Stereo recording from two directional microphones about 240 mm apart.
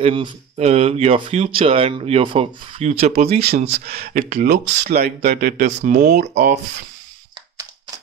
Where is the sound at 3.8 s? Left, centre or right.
Right.